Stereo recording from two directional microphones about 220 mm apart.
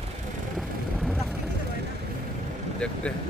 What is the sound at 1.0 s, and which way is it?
Vehicle, centre (ahead or behind).